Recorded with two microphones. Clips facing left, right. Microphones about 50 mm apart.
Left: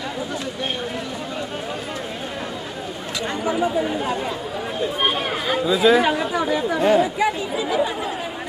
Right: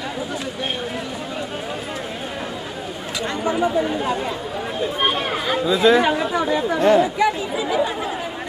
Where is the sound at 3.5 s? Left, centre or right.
Centre.